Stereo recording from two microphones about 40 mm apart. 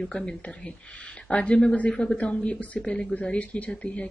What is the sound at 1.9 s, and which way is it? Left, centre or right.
Speech, centre.